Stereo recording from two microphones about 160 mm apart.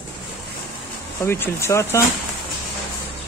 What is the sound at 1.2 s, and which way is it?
Speech, 15° left (ahead or behind).